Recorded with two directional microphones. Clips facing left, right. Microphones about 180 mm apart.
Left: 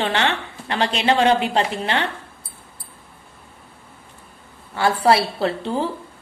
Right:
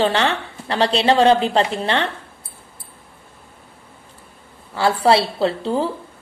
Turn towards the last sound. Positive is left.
turn(degrees=-30)  # may be behind; listen again after turning